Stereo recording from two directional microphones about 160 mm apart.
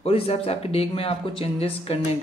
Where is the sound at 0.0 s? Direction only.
40° left (ahead or behind).